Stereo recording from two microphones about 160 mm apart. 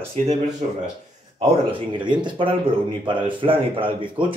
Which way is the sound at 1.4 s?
35° right (ahead or behind).